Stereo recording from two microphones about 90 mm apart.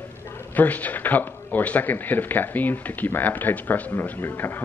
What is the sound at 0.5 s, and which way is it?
Speech, 20° left (ahead or behind).